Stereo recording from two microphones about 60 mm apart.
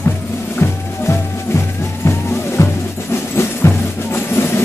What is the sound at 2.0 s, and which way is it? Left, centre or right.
Music, left.